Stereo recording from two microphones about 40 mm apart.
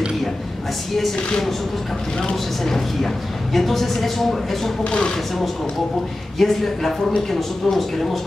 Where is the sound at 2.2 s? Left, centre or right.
Centre.